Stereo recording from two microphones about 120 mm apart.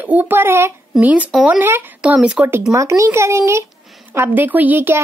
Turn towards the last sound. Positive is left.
turn(degrees=-20)  # may be behind; listen again after turning